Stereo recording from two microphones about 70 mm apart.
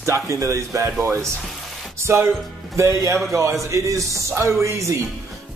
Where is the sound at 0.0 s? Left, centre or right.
Right.